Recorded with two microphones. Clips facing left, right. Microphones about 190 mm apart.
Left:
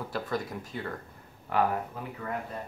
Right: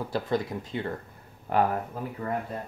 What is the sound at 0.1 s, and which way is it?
Speech, 25° right (ahead or behind).